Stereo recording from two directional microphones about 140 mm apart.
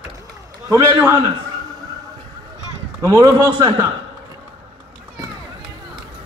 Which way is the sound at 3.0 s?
25° right (ahead or behind).